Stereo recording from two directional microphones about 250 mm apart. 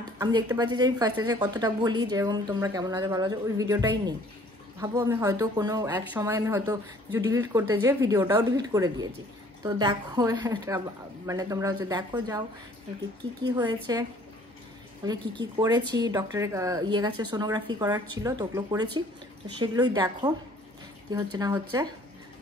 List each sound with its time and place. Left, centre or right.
0.2 s a woman's voice: centre
13.9 s a woman's voice: centre
15.0 s a woman's voice: centre